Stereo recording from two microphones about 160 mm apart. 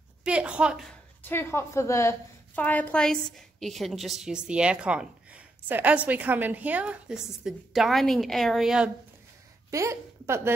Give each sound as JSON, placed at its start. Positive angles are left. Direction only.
{"t": 0.2, "sound": "a woman's voice", "side_deg": -5}
{"t": 1.2, "sound": "a woman's voice", "side_deg": 15}
{"t": 9.7, "sound": "speech", "side_deg": -20}